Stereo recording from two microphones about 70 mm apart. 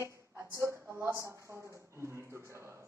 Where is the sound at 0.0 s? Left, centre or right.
Right.